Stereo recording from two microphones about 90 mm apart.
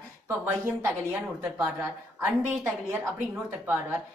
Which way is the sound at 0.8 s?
25° right (ahead or behind).